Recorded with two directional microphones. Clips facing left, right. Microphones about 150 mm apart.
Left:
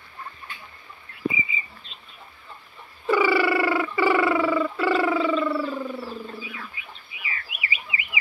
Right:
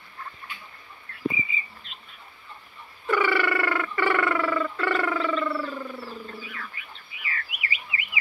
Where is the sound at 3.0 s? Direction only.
10° left (ahead or behind).